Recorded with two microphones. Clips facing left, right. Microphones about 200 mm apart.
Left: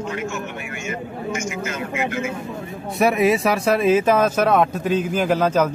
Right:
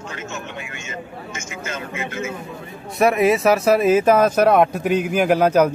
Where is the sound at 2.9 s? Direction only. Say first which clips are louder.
Right 1 dB; centre (ahead or behind).